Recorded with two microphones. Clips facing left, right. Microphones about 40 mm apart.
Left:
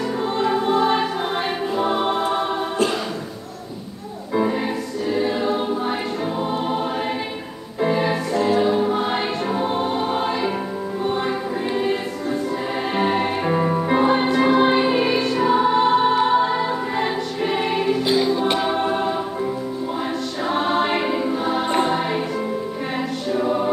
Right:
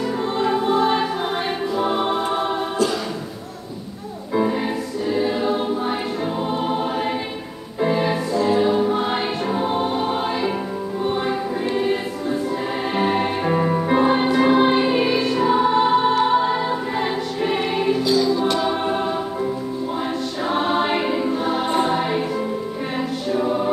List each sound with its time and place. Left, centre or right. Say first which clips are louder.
0.4 s music: even; centre
4.3 s music: even; centre
5.1 s choir: even; centre
7.8 s music: even; centre
8.5 s choir: right 1 dB; centre
11.1 s music: right 1 dB; centre
18.0 s music: right 1 dB; left
18.5 s choir: even; left
18.8 s choir: left 1 dB; centre
20.4 s choir: even; centre
21.8 s music: right 1 dB; centre
23.3 s music: even; centre